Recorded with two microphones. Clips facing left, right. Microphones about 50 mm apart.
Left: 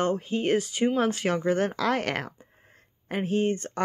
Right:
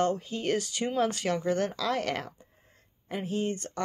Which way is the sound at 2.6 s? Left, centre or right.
Left.